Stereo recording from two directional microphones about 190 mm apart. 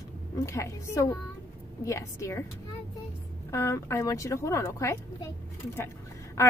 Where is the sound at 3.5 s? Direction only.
15° left (ahead or behind).